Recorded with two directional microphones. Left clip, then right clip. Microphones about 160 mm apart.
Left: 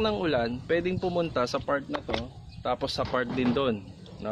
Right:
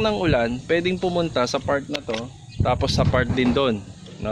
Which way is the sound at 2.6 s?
40° right (ahead or behind).